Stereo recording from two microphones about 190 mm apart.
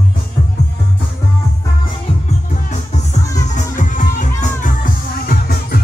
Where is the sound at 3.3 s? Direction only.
40° left (ahead or behind).